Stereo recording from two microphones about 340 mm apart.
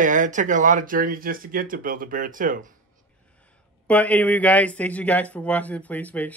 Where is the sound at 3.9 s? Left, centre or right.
Centre.